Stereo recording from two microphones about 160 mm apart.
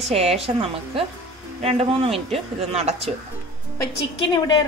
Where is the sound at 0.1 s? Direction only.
40° right (ahead or behind).